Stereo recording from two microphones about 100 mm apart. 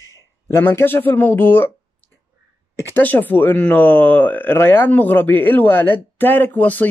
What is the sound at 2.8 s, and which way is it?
Speech, 20° left (ahead or behind).